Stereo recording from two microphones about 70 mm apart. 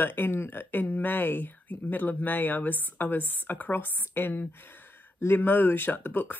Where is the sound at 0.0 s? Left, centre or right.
Left.